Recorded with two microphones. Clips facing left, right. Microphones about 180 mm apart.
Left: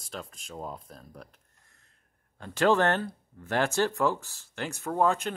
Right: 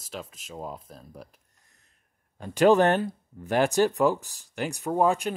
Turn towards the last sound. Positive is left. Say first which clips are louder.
# right 3 dB
turn(degrees=-15)  # may be behind; listen again after turning